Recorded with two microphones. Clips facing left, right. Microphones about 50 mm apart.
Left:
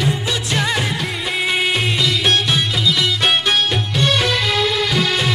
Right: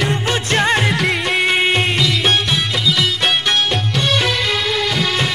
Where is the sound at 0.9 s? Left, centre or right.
Right.